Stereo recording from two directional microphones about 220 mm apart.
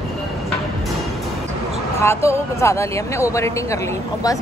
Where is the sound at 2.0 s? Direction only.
10° left (ahead or behind).